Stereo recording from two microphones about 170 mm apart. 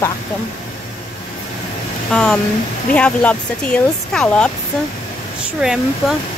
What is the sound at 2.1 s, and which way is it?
Speech, 5° left (ahead or behind).